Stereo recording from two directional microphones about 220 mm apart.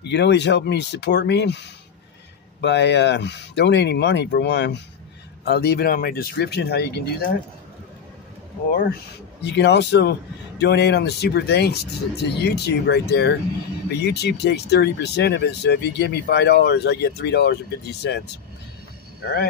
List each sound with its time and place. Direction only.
0.0 s speech: 50° left (ahead or behind)
9.4 s speech: 50° left (ahead or behind)